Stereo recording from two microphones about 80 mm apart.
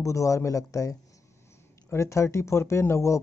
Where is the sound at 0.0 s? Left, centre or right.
Left.